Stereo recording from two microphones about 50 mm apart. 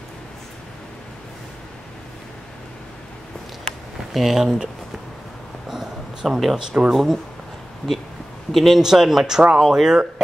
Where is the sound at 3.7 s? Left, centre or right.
Centre.